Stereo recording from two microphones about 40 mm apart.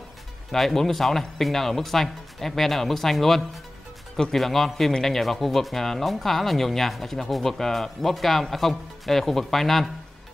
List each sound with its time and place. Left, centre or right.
0.5 s speech: centre